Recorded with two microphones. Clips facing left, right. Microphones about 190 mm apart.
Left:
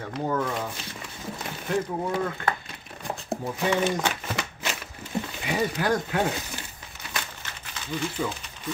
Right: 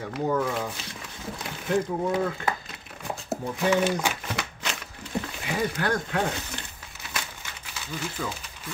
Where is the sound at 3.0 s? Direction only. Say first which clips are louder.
Even; centre (ahead or behind).